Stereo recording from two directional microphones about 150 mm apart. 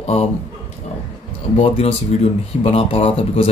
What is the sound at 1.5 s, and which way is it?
Speech, 40° left (ahead or behind).